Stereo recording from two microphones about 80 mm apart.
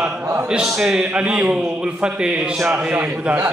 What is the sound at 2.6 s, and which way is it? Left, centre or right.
Speech, right.